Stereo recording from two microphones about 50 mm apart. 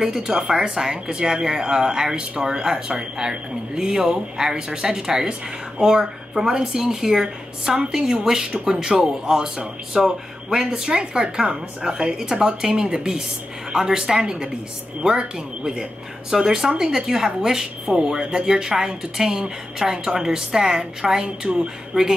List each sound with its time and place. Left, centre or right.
0.0 s speech: centre